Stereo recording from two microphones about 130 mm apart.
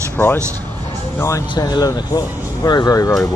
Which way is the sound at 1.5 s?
30° left (ahead or behind).